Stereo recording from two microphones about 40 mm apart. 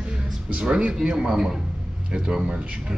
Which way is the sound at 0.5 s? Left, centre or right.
Right.